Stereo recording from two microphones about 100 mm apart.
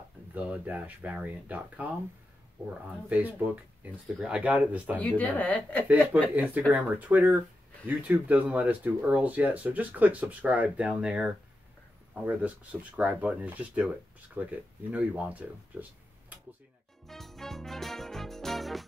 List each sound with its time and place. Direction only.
0.3 s speech: 15° right (ahead or behind)
3.1 s speech: 15° right (ahead or behind)
4.9 s speech: 15° left (ahead or behind)
6.3 s speech: 15° right (ahead or behind)
17.0 s music: centre (ahead or behind)